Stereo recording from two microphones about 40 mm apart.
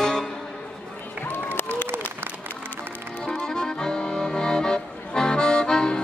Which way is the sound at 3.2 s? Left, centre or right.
Centre.